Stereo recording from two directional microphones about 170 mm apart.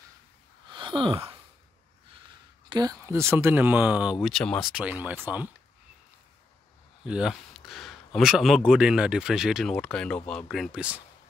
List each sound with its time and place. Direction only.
0.7 s a sound: 30° right (ahead or behind)
2.7 s speech: 20° right (ahead or behind)
7.1 s speech: 5° right (ahead or behind)